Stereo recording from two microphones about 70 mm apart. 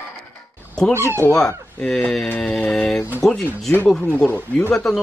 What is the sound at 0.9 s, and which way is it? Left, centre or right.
Speech, right.